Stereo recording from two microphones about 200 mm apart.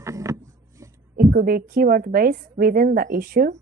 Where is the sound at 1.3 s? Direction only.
50° right (ahead or behind).